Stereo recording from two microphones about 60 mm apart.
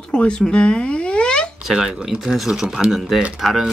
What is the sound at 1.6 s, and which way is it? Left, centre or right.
Speech, centre.